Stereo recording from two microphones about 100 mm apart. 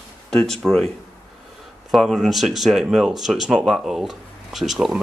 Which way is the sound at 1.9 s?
Centre (ahead or behind).